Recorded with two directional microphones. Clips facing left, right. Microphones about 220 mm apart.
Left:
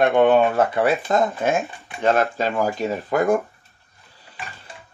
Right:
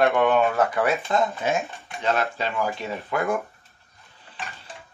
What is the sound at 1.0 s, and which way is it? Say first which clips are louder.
Speech: left 4 dB; 50° left (ahead or behind).